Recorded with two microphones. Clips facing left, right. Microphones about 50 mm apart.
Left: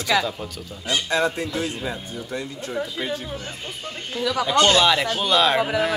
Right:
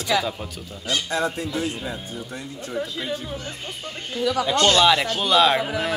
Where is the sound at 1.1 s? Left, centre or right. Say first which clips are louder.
Left 4 dB; left.